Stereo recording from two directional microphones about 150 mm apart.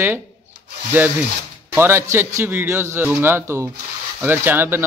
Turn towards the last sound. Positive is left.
turn(degrees=-15)  # may be behind; listen again after turning